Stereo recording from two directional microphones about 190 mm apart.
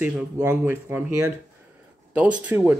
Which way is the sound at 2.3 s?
10° right (ahead or behind).